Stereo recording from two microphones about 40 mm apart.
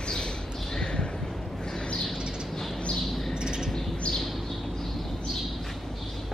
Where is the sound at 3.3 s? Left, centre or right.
Centre.